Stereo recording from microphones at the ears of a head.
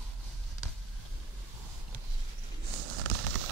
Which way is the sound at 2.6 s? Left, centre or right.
Right.